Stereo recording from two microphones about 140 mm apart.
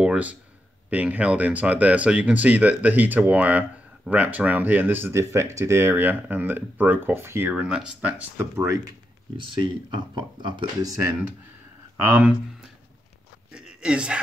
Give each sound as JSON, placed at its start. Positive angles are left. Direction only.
{"t": 0.0, "sound": "a sound", "side_deg": -10}
{"t": 0.8, "sound": "speech", "side_deg": -10}
{"t": 8.5, "sound": "speech", "side_deg": -25}
{"t": 9.4, "sound": "speech", "side_deg": -35}
{"t": 10.9, "sound": "speech", "side_deg": -20}
{"t": 12.0, "sound": "speech", "side_deg": -10}
{"t": 13.5, "sound": "a sound", "side_deg": -5}